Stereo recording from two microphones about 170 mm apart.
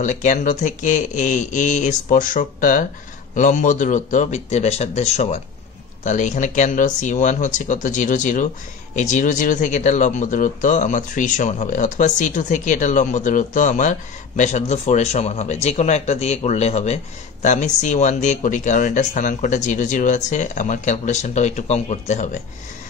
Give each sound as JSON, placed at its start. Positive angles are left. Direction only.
{"t": 0.0, "sound": "speech", "side_deg": 45}